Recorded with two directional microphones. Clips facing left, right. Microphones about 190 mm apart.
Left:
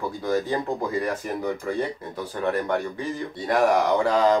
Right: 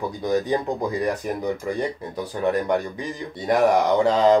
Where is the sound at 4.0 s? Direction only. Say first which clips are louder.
Right 3 dB; 20° right (ahead or behind).